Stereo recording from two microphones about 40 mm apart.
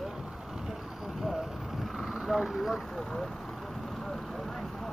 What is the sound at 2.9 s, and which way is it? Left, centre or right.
Speech, centre.